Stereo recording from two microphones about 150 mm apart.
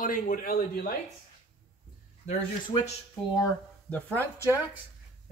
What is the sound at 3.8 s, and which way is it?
Speech, 10° left (ahead or behind).